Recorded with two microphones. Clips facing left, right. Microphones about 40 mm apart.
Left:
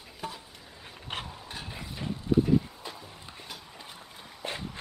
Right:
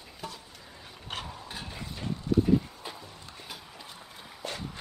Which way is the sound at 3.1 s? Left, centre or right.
Centre.